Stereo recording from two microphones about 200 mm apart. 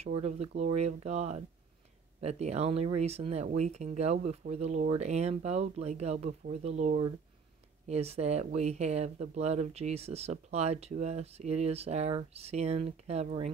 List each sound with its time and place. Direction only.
0.0 s speech: 30° right (ahead or behind)